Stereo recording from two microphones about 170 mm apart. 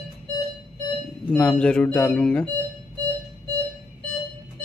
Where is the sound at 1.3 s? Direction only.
5° left (ahead or behind).